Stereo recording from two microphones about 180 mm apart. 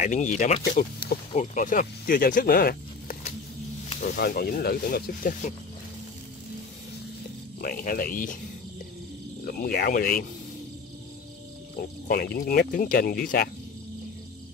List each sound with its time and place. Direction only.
0.0 s speech: 40° left (ahead or behind)
4.2 s speech: 55° left (ahead or behind)
7.6 s speech: 50° left (ahead or behind)
9.4 s speech: 55° left (ahead or behind)
11.7 s speech: 60° left (ahead or behind)